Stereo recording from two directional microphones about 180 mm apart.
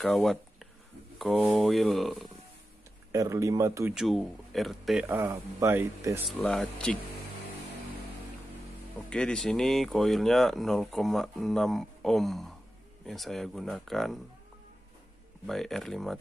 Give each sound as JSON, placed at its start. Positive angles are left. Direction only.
{"t": 0.0, "sound": "speech", "side_deg": 0}
{"t": 3.1, "sound": "speech", "side_deg": -15}
{"t": 3.9, "sound": "speech", "side_deg": 0}
{"t": 5.0, "sound": "speech", "side_deg": -15}
{"t": 6.2, "sound": "speech", "side_deg": 0}
{"t": 9.1, "sound": "speech", "side_deg": 5}
{"t": 15.4, "sound": "speech", "side_deg": 0}